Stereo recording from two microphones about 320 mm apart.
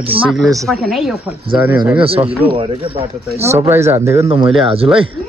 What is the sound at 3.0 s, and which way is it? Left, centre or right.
A man's voice, centre.